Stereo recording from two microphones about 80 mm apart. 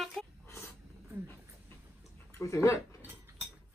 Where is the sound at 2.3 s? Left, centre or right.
Left.